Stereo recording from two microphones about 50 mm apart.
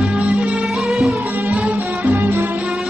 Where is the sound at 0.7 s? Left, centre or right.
Centre.